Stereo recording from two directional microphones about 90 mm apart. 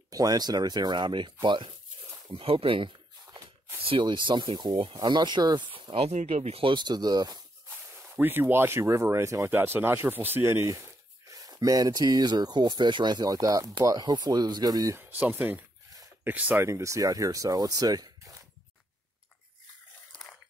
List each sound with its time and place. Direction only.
0.1 s speech: 45° right (ahead or behind); by 2.9 s 85° right
3.8 s speech: 75° right (ahead or behind); by 5.7 s 55° right (ahead or behind)
5.7 s a sound: 80° right
6.5 s speech: 70° right (ahead or behind); by 7.3 s 50° right (ahead or behind)
8.2 s speech: 25° right (ahead or behind); by 15.0 s 45° right (ahead or behind)
15.0 s speech: 20° right (ahead or behind)
16.5 s speech: 30° right (ahead or behind)